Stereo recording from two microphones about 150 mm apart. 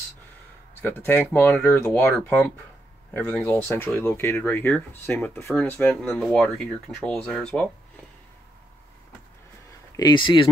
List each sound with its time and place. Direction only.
0.8 s speech: 10° left (ahead or behind)
9.9 s speech: 30° left (ahead or behind)